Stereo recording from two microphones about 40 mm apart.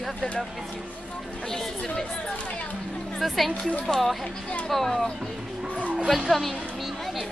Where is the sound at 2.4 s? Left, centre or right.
Left.